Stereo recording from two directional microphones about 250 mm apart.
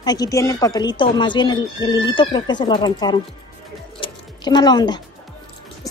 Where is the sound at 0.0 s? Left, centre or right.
Centre.